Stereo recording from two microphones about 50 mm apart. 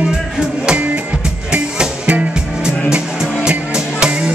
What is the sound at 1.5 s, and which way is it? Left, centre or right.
Music, right.